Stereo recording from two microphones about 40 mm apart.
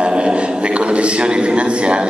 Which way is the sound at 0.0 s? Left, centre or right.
Right.